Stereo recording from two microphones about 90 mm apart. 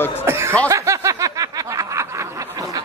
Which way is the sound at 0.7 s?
35° right (ahead or behind).